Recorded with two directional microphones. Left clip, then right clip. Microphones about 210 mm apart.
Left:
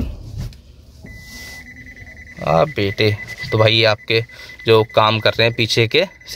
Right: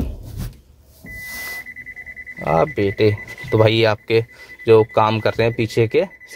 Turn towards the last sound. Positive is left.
turn(degrees=0)  # may be behind; listen again after turning